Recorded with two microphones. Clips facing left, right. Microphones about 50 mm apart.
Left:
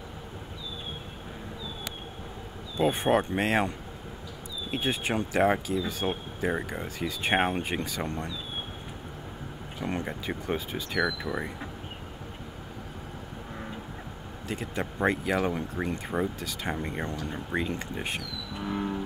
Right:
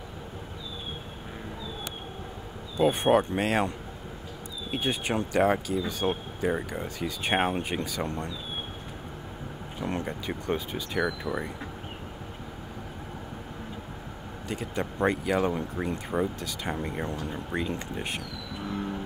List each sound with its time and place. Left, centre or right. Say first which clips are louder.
2.8 s speech: right 2 dB; centre
9.8 s speech: even; centre
14.5 s speech: right 1 dB; centre
18.7 s music: left 2 dB; centre